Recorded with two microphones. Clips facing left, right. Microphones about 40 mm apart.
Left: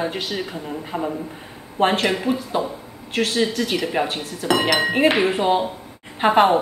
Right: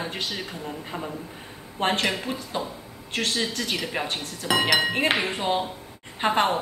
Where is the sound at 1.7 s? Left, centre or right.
Centre.